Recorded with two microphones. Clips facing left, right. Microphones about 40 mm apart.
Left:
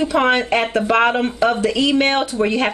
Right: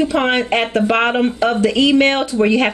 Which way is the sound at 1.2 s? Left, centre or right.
Centre.